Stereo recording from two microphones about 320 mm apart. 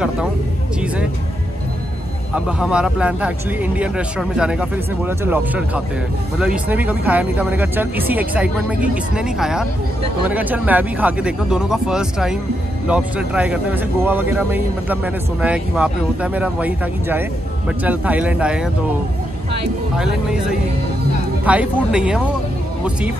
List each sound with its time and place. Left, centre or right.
2.3 s speech: centre
21.5 s speech: centre